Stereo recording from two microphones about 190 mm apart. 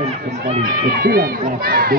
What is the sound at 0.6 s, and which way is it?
Speech, 50° right (ahead or behind).